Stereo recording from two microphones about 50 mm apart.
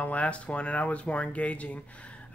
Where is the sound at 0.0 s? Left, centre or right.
Left.